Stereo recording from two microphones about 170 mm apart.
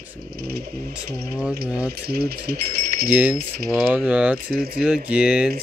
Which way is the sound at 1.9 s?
65° right (ahead or behind).